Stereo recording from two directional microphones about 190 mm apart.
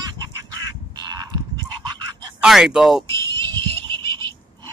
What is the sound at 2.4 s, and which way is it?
Speech, 5° right (ahead or behind).